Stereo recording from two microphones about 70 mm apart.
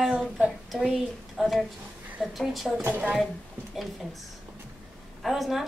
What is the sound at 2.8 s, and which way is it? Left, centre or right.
Speech, right.